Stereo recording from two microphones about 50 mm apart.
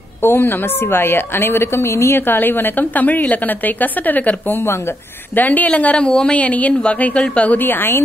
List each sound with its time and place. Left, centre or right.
0.2 s a woman's voice: left
2.1 s a woman's voice: left
4.6 s speech: left
5.3 s a woman's voice: left
7.6 s a woman's voice: left